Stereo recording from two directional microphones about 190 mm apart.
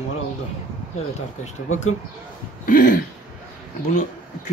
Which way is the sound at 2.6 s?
45° left (ahead or behind).